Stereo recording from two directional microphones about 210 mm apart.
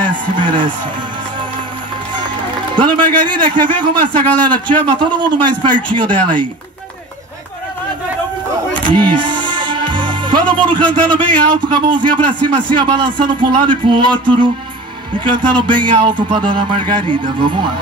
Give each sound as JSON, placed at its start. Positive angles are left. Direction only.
{"t": 0.0, "sound": "music", "side_deg": -25}
{"t": 2.7, "sound": "speech", "side_deg": -20}
{"t": 8.7, "sound": "music", "side_deg": -20}
{"t": 12.3, "sound": "speech", "side_deg": -20}
{"t": 15.1, "sound": "speech", "side_deg": -25}